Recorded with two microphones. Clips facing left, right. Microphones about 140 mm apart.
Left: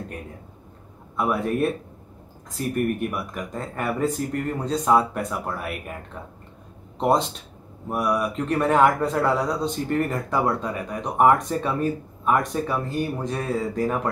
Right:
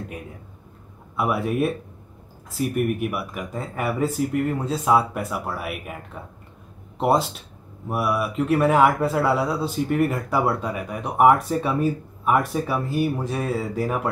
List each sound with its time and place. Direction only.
1.1 s speech: 5° right (ahead or behind)
7.0 s speech: 5° right (ahead or behind)